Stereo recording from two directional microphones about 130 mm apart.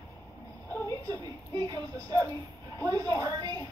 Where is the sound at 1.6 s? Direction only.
30° right (ahead or behind).